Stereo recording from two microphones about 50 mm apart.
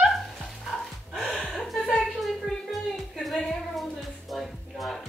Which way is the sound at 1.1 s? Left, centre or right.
Centre.